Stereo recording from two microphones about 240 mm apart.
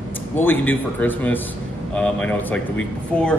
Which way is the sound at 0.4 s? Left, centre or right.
Centre.